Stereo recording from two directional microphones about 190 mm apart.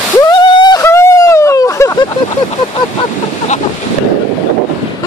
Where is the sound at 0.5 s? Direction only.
20° left (ahead or behind).